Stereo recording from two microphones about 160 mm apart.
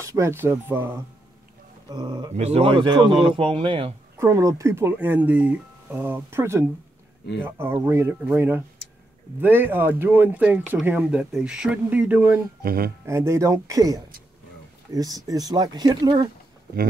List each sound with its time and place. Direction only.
0.0 s speech: 15° right (ahead or behind)
1.9 s speech: 30° right (ahead or behind)
2.3 s speech: 40° right (ahead or behind)
4.2 s speech: 20° right (ahead or behind)
12.6 s speech: 70° right (ahead or behind)
13.0 s speech: 15° right (ahead or behind)